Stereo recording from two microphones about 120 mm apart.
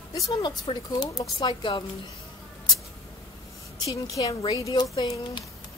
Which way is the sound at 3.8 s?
30° left (ahead or behind).